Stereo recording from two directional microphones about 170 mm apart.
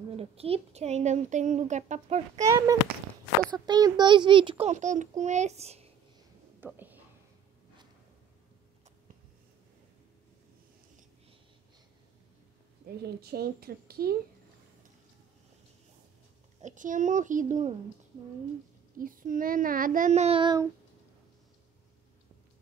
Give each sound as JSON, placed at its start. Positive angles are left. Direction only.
{"t": 0.1, "sound": "speech", "side_deg": -35}
{"t": 2.3, "sound": "a child's voice", "side_deg": -20}
{"t": 4.6, "sound": "a child's voice", "side_deg": -45}
{"t": 6.6, "sound": "whispering", "side_deg": -10}
{"t": 13.0, "sound": "speech", "side_deg": -70}
{"t": 16.6, "sound": "a child's voice", "side_deg": -50}
{"t": 18.9, "sound": "a child's voice", "side_deg": -55}